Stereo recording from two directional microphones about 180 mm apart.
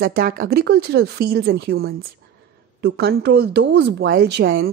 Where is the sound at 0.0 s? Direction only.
55° right (ahead or behind).